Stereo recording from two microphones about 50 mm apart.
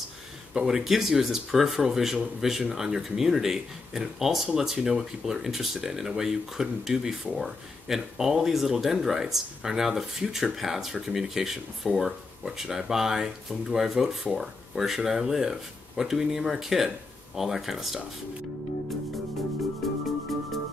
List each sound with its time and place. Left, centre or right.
0.6 s speech: centre